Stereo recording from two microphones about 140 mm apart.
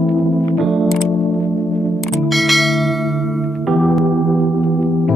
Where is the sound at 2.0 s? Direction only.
Centre (ahead or behind).